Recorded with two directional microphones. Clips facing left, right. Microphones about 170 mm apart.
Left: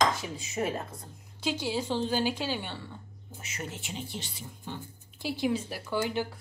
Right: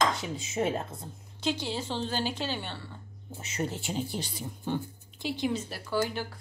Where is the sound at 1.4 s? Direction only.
10° left (ahead or behind).